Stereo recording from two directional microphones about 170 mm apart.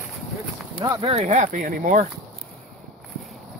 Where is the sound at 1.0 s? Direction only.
40° right (ahead or behind).